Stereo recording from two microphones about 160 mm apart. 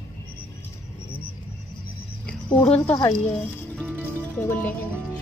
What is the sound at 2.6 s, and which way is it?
Speech, 40° left (ahead or behind).